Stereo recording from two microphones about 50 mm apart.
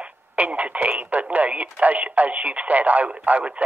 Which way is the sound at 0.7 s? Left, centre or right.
Right.